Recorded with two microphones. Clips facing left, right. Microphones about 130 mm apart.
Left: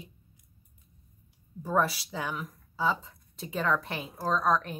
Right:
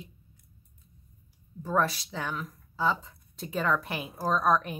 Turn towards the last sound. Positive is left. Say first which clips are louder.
# right 1 dB
turn(degrees=-10)  # may be behind; listen again after turning